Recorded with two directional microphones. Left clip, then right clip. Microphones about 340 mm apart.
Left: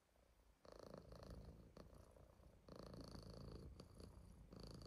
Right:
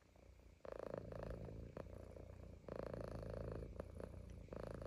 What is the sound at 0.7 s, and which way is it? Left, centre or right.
Purr, right.